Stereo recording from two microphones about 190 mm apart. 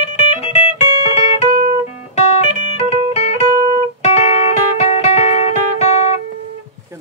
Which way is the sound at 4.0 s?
35° left (ahead or behind).